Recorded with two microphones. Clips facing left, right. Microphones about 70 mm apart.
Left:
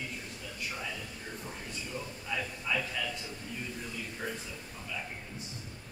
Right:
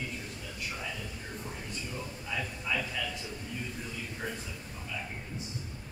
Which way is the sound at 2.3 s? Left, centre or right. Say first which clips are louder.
Left 1 dB; centre.